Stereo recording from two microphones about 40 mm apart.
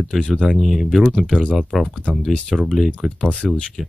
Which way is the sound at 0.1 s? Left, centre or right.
Centre.